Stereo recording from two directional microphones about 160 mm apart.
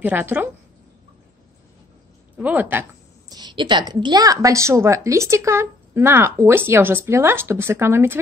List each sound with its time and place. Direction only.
0.0 s speech: 10° right (ahead or behind)
2.3 s speech: 10° right (ahead or behind)
3.3 s a woman's voice: 25° right (ahead or behind)